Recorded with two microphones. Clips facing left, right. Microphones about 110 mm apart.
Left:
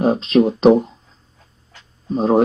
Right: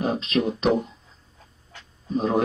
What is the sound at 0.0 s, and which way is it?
Speech, 35° left (ahead or behind).